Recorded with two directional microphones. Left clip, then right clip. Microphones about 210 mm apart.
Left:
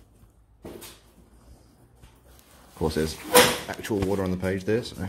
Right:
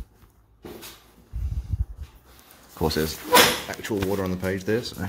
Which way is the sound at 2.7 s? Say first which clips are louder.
Right 2 dB; 10° right (ahead or behind).